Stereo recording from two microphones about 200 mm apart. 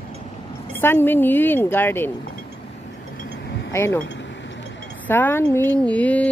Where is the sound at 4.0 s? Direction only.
65° left (ahead or behind).